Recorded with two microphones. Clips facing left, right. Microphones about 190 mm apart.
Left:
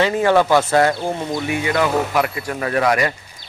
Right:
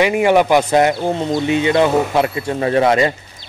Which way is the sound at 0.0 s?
15° right (ahead or behind).